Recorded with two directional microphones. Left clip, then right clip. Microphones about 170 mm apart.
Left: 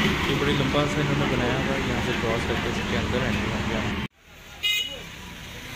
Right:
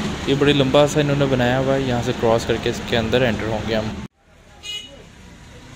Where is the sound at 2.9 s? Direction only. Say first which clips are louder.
Right 11 dB; 50° right (ahead or behind).